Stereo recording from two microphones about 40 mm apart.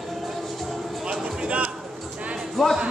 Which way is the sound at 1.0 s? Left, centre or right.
Centre.